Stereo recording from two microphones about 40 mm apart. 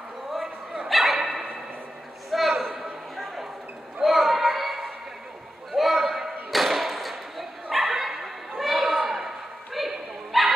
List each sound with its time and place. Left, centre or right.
0.3 s dog: centre
2.3 s a sound: centre
5.7 s slam: centre
7.7 s bow-wow: centre